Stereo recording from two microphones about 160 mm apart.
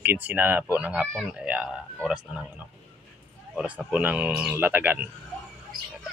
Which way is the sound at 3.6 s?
5° right (ahead or behind).